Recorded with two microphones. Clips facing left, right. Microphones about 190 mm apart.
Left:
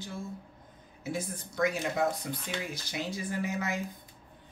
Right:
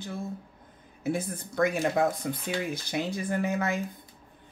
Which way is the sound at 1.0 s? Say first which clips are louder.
Right 5 dB; 55° right (ahead or behind).